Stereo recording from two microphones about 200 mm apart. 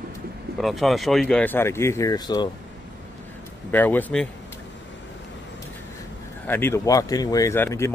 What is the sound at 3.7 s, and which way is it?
Speech, 10° left (ahead or behind).